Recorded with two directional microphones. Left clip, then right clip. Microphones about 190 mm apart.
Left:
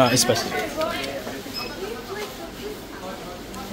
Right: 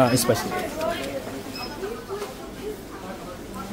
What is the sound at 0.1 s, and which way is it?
Speech, 25° right (ahead or behind).